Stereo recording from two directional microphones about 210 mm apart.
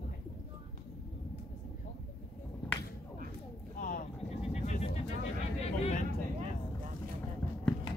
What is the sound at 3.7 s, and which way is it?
Vehicle, 40° left (ahead or behind).